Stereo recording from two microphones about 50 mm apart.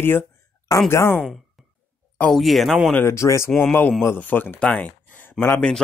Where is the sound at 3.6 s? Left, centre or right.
Left.